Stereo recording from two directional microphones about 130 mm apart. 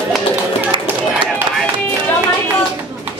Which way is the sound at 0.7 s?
40° right (ahead or behind).